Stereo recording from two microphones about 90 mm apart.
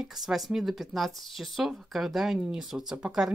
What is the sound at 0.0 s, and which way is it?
Speech, 5° right (ahead or behind).